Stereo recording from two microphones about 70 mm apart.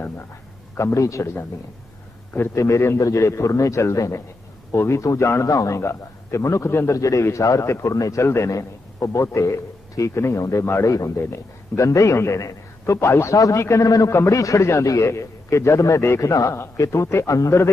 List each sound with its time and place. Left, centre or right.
0.9 s a man's voice: left
2.5 s a man's voice: left
7.0 s a man's voice: left